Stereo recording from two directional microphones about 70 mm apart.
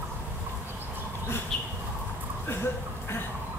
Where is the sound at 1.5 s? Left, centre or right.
Centre.